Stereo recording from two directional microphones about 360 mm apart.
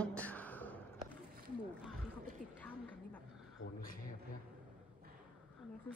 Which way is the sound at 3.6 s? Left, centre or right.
Left.